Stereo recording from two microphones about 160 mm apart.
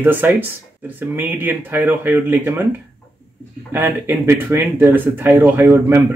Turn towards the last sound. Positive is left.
turn(degrees=-15)  # may be behind; listen again after turning